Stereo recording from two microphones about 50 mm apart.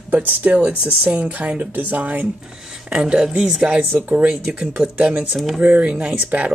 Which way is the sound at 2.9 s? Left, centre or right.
Right.